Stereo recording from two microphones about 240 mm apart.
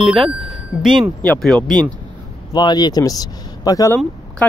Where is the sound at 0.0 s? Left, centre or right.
Centre.